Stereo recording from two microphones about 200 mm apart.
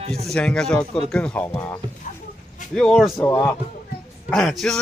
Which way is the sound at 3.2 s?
10° left (ahead or behind).